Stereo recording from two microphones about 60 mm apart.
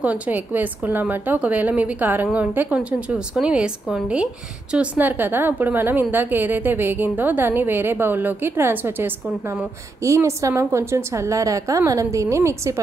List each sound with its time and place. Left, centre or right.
0.0 s a woman's voice: right
4.9 s a woman's voice: right
10.0 s a woman's voice: right